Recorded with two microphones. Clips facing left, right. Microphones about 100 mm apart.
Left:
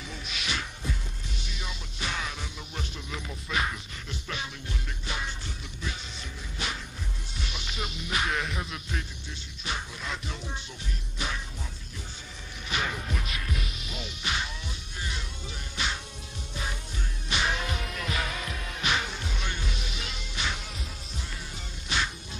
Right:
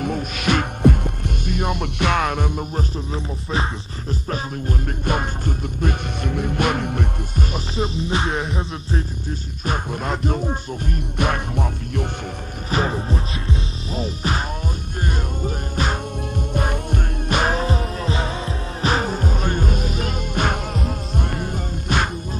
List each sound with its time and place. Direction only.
0.0 s music: 55° right (ahead or behind)
7.5 s music: 35° right (ahead or behind)
9.7 s music: 50° right (ahead or behind)
12.7 s music: 35° right (ahead or behind)